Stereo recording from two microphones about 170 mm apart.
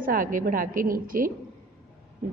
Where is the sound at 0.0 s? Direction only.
55° right (ahead or behind).